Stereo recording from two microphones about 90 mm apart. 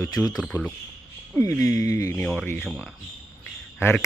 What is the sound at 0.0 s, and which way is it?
Speech, 40° left (ahead or behind).